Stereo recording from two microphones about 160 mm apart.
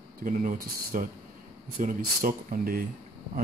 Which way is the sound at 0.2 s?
60° right (ahead or behind).